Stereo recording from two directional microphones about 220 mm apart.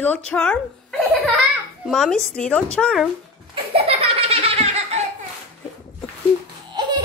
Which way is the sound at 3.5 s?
25° right (ahead or behind).